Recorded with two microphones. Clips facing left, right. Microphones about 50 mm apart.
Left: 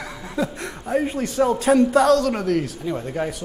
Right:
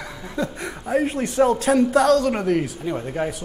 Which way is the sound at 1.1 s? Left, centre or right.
Centre.